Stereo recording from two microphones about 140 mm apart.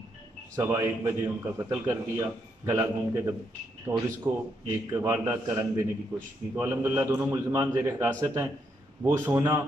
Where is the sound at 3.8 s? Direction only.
25° right (ahead or behind).